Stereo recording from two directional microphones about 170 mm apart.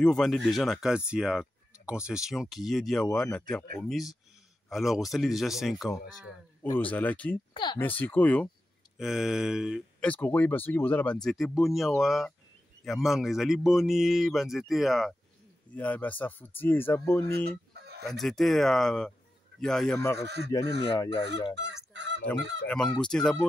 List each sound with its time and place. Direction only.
0.0 s speech: 5° left (ahead or behind)
6.6 s speech: 10° left (ahead or behind)
7.5 s speech: 25° left (ahead or behind)
7.8 s speech: 10° left (ahead or behind)
8.9 s speech: centre (ahead or behind)
18.0 s speech: centre (ahead or behind)
20.2 s speech: 80° right
20.8 s speech: 30° left (ahead or behind)
21.5 s fowl: 90° right
22.7 s speech: 5° left (ahead or behind)